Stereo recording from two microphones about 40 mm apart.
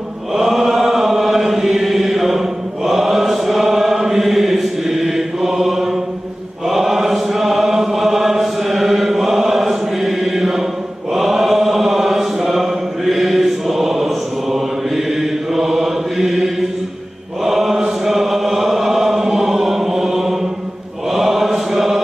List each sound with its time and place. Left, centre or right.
0.3 s chant: centre
15.5 s mantra: centre
17.5 s chant: centre
21.1 s mantra: centre